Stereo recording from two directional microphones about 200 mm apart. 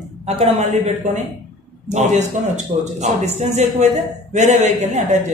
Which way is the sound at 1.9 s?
35° right (ahead or behind).